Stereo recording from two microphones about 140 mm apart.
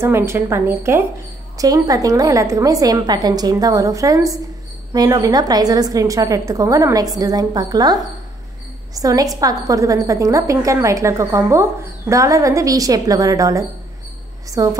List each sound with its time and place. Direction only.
0.0 s a woman's voice: 20° right (ahead or behind)